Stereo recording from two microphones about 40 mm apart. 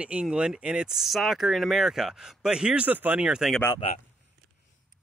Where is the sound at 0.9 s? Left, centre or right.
Centre; by 2.9 s right.